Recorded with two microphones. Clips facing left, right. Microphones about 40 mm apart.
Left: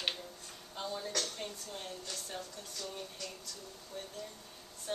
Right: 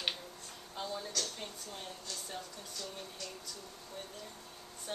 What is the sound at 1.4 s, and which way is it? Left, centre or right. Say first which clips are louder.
A woman's voice: left 2 dB; centre.